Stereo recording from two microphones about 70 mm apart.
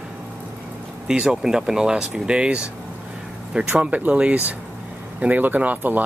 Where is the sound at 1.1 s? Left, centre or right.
Centre.